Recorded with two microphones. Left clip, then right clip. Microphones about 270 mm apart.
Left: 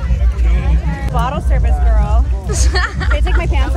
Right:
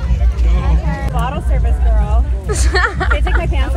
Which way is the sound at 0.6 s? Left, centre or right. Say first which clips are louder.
Right 3 dB; centre.